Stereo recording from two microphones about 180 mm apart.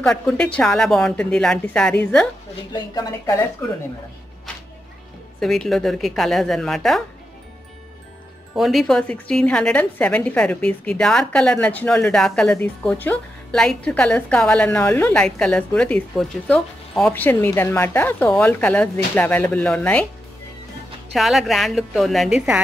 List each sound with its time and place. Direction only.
0.0 s a woman's voice: 5° left (ahead or behind)
2.7 s a woman's voice: 20° left (ahead or behind)
5.4 s a woman's voice: centre (ahead or behind)
8.5 s a woman's voice: centre (ahead or behind)
21.1 s a woman's voice: centre (ahead or behind)